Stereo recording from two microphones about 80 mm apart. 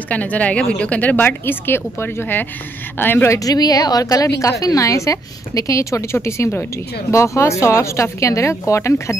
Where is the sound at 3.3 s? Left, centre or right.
Left.